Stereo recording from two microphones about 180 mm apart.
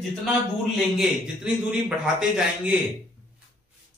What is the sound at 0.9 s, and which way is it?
A man's voice, 5° right (ahead or behind).